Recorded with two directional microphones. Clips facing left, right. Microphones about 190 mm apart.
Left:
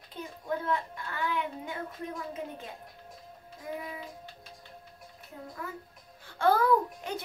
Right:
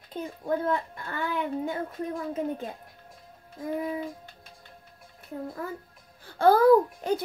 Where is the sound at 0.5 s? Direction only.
40° right (ahead or behind).